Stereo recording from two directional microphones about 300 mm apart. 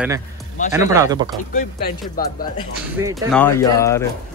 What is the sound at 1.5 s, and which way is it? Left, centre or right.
Speech, left.